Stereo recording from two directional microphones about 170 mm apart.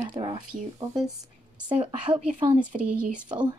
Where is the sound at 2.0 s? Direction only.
30° right (ahead or behind).